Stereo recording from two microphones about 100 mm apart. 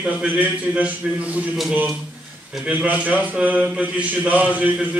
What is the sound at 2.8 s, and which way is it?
A man's voice, 15° right (ahead or behind).